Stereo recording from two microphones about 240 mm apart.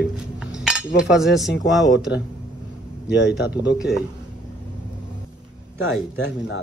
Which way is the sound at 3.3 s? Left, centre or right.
Left.